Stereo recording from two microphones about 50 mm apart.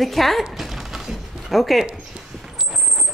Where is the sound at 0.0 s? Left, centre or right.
Centre.